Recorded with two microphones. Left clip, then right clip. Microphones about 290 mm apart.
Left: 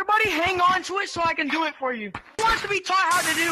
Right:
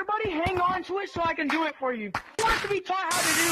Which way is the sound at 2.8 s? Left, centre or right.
Left.